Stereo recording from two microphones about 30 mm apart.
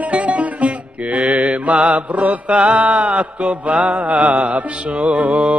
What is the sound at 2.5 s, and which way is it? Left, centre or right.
Mantra, right.